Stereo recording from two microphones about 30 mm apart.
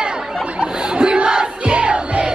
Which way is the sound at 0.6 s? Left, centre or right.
Right.